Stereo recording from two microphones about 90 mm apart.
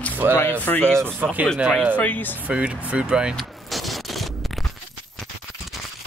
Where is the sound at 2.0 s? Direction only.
20° left (ahead or behind).